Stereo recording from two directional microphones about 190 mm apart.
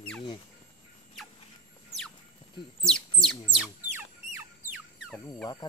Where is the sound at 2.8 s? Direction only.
5° left (ahead or behind).